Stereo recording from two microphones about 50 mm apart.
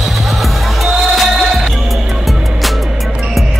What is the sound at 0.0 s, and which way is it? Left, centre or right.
Music, centre.